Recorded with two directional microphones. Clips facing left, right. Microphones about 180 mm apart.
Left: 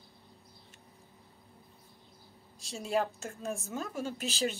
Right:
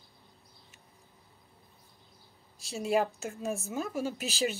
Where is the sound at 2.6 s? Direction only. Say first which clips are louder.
Right 3 dB; 10° right (ahead or behind).